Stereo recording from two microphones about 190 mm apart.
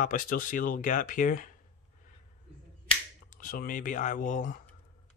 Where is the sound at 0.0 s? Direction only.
45° left (ahead or behind).